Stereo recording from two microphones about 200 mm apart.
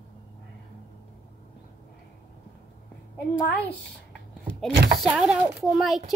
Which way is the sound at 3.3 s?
10° left (ahead or behind).